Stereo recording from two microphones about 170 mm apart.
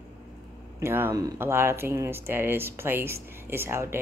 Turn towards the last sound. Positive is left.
turn(degrees=-15)  # may be behind; listen again after turning